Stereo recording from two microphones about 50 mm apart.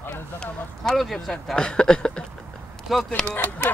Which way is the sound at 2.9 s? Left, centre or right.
Centre.